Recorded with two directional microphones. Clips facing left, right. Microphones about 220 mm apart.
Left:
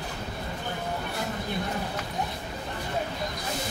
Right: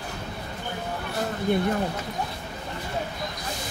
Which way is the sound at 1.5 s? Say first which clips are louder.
Right 11 dB; 55° right (ahead or behind).